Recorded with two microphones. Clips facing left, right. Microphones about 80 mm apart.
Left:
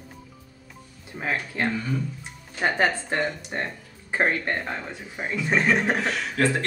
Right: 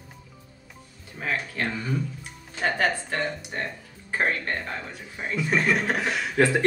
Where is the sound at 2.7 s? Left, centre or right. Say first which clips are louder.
Left 3 dB; left.